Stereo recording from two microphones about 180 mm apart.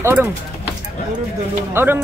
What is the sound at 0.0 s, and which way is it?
Speech, 10° right (ahead or behind).